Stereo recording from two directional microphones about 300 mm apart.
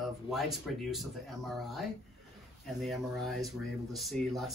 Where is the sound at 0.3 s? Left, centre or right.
Centre.